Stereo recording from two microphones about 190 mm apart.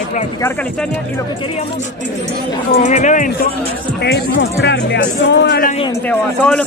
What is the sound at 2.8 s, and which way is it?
Speech, 40° left (ahead or behind).